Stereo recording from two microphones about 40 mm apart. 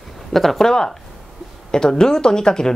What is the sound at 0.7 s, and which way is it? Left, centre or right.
Speech, centre.